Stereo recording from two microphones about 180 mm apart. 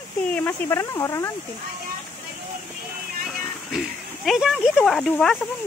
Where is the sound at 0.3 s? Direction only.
15° left (ahead or behind).